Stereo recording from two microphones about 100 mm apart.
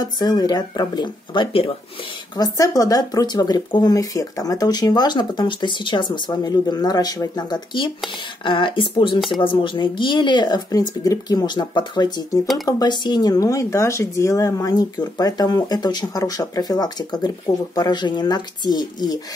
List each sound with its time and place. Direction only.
0.0 s speech: 45° left (ahead or behind); by 1.7 s 60° left (ahead or behind)
2.3 s speech: 40° left (ahead or behind)